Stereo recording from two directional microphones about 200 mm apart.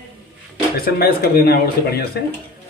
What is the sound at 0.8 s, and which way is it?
Stir, 50° left (ahead or behind).